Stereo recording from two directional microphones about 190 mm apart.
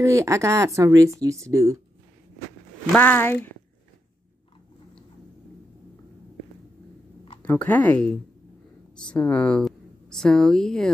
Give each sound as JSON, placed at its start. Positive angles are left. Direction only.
{"t": 0.0, "sound": "a woman's voice", "side_deg": -15}
{"t": 2.9, "sound": "speech", "side_deg": 10}
{"t": 7.4, "sound": "a woman's voice", "side_deg": 10}